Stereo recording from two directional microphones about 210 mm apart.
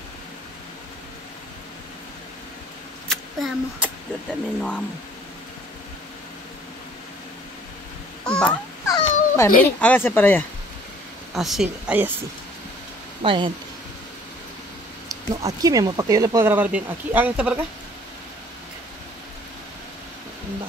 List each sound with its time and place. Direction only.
3.1 s speech: centre (ahead or behind)
8.3 s fowl: 5° left (ahead or behind)
8.8 s a sound: 15° left (ahead or behind)
9.6 s speech: 5° left (ahead or behind)
11.3 s speech: centre (ahead or behind)
13.2 s speech: 25° right (ahead or behind)
15.0 s speech: 15° right (ahead or behind)